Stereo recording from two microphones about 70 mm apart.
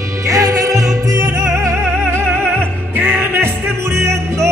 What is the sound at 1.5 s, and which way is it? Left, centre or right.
Music, right.